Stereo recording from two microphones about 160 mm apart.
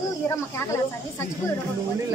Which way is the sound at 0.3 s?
15° left (ahead or behind).